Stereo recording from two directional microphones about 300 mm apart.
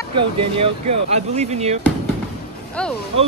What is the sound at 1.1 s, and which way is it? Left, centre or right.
Speech, right.